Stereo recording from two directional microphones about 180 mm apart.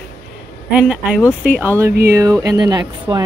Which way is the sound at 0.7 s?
5° right (ahead or behind).